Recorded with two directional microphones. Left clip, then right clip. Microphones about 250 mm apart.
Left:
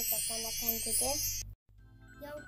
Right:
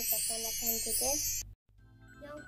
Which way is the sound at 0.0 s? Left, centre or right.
Centre.